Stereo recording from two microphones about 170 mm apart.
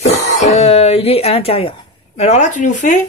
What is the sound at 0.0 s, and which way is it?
Cough, 40° left (ahead or behind).